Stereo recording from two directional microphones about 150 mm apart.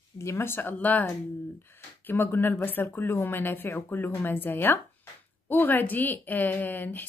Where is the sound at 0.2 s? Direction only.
15° left (ahead or behind).